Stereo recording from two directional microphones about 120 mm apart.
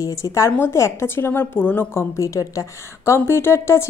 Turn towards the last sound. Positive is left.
turn(degrees=20)  # may be behind; listen again after turning